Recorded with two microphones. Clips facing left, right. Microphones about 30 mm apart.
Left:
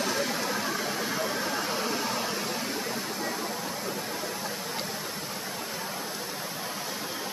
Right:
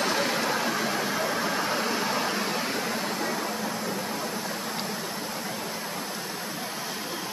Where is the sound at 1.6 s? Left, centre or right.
Right.